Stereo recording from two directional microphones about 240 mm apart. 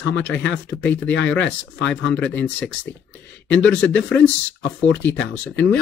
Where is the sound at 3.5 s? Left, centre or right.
Centre.